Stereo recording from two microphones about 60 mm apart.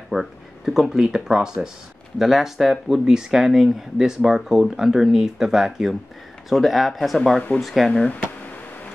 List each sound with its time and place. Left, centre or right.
0.1 s speech: centre
7.9 s speech: centre